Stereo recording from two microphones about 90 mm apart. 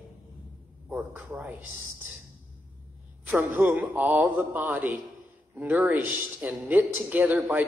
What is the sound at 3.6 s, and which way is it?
A man's voice, 15° right (ahead or behind).